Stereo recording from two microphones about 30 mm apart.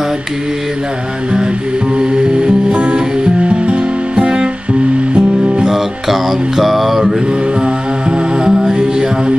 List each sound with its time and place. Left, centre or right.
2.0 s music: right
3.4 s music: right
4.1 s music: right
5.7 s mantra: centre
7.6 s mantra: right